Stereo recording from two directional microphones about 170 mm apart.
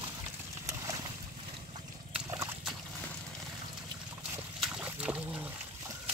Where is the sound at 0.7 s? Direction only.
20° right (ahead or behind).